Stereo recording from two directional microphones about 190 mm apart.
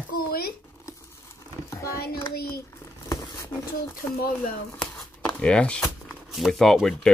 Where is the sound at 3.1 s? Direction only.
15° left (ahead or behind).